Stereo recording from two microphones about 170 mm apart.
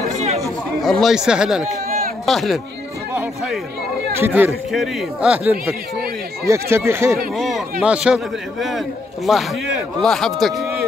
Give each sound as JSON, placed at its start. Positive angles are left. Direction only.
{"t": 0.4, "sound": "a man's voice", "side_deg": 0}
{"t": 4.2, "sound": "speech", "side_deg": -10}
{"t": 7.3, "sound": "a sound", "side_deg": 0}
{"t": 7.8, "sound": "a man's voice", "side_deg": -5}